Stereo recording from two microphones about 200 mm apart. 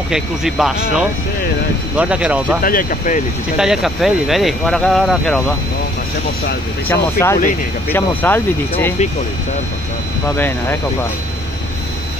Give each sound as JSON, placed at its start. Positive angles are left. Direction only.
{"t": 0.1, "sound": "speech", "side_deg": 0}
{"t": 2.6, "sound": "speech", "side_deg": 45}
{"t": 3.5, "sound": "speech", "side_deg": 0}
{"t": 6.9, "sound": "speech", "side_deg": 15}
{"t": 10.3, "sound": "speech", "side_deg": 10}